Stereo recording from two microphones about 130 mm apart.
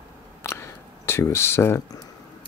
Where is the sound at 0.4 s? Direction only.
20° left (ahead or behind).